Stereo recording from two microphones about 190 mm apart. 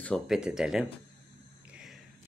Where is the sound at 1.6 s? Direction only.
5° right (ahead or behind).